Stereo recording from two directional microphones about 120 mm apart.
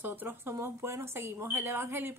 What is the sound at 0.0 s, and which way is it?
A woman's voice, 15° right (ahead or behind).